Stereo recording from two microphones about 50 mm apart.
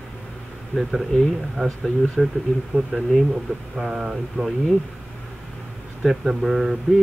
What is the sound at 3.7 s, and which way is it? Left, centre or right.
Speech, centre.